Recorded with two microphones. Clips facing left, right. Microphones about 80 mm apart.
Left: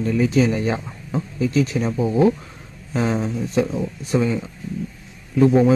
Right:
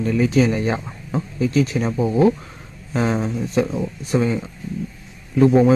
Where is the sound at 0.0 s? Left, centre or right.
Right.